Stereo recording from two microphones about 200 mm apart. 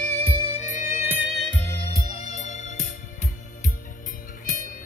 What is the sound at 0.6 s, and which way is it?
Music, 15° right (ahead or behind).